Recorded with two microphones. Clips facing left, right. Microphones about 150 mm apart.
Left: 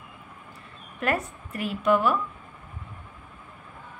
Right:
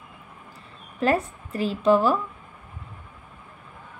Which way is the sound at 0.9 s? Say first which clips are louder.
Right 5 dB; 30° right (ahead or behind).